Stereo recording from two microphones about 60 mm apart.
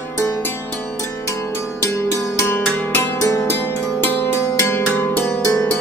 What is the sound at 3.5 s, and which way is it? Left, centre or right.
Zither, left.